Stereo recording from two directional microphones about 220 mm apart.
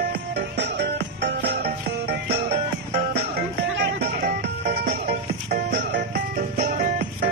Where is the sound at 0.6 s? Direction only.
50° right (ahead or behind).